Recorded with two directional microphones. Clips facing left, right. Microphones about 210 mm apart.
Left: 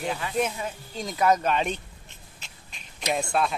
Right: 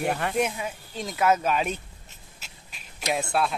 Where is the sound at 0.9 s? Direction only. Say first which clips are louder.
Even; centre (ahead or behind).